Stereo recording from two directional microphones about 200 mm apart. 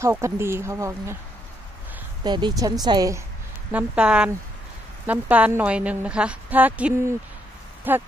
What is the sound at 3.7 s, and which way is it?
Speech, 5° right (ahead or behind).